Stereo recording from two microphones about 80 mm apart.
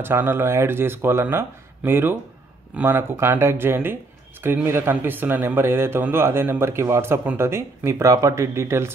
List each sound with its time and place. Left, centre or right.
0.0 s speech: right